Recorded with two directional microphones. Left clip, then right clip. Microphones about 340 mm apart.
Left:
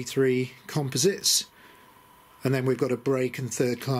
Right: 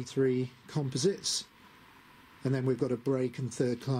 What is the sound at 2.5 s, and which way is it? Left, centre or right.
Speech, centre.